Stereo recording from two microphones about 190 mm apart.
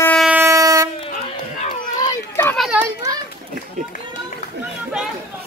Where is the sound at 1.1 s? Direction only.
40° left (ahead or behind).